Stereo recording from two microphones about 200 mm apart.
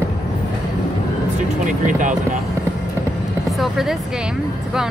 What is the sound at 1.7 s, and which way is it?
Speech, 40° right (ahead or behind).